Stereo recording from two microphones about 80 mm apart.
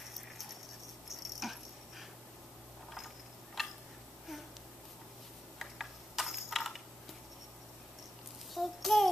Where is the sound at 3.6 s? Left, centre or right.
Centre.